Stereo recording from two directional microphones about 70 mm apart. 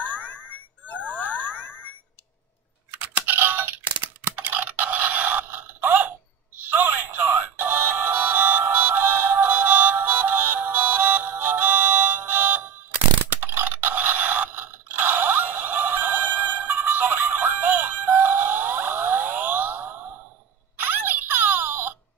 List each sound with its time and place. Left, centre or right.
0.1 s bicycle bell: left
1.1 s boing: left
2.9 s computer keyboard: right
6.7 s music: right
13.4 s scrape: right
20.8 s a sound: right